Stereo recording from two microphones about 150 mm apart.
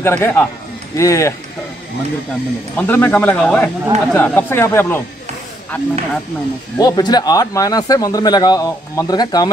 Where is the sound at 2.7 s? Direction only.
10° left (ahead or behind).